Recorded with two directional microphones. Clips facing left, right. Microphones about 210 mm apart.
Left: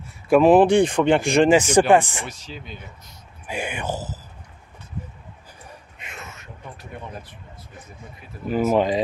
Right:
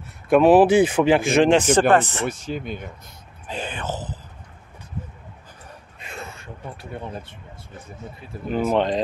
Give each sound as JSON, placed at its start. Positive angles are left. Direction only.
{"t": 0.3, "sound": "speech", "side_deg": 0}
{"t": 1.6, "sound": "speech", "side_deg": 10}
{"t": 2.2, "sound": "speech", "side_deg": -50}
{"t": 3.4, "sound": "speech", "side_deg": 10}
{"t": 5.9, "sound": "a sound", "side_deg": -30}
{"t": 8.5, "sound": "speech", "side_deg": 5}